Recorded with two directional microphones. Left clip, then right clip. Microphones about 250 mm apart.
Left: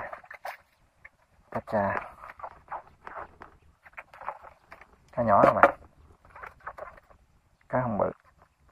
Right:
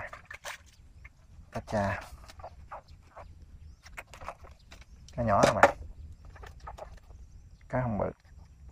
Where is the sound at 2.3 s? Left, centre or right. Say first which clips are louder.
Left 6 dB; right.